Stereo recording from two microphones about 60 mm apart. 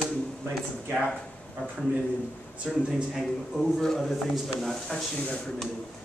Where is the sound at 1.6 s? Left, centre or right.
Left.